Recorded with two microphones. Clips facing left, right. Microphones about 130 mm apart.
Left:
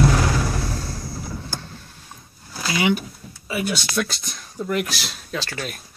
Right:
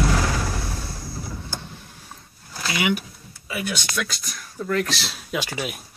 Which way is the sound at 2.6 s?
30° left (ahead or behind).